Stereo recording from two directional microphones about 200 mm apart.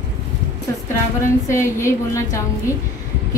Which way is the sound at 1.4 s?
15° left (ahead or behind).